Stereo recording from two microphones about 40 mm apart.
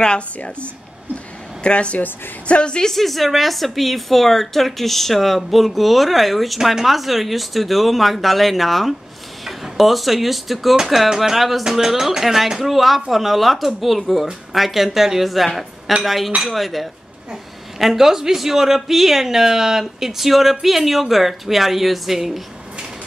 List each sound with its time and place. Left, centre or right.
1.1 s a sound: left
2.4 s speech: left
2.9 s speech: centre